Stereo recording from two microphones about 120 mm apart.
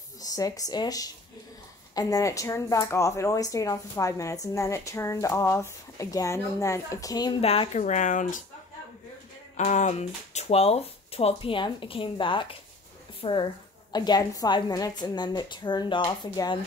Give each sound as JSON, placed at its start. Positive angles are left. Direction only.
{"t": 0.2, "sound": "a woman's voice", "side_deg": 30}
{"t": 7.4, "sound": "speech", "side_deg": 50}
{"t": 7.7, "sound": "speech", "side_deg": 85}
{"t": 9.6, "sound": "speech", "side_deg": 85}
{"t": 13.9, "sound": "a woman's voice", "side_deg": 35}